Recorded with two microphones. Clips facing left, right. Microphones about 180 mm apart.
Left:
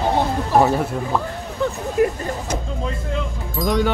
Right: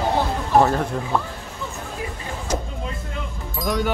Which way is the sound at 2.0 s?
65° left (ahead or behind).